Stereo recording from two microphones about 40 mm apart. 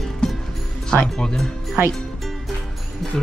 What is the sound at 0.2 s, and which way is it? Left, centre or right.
Music, left.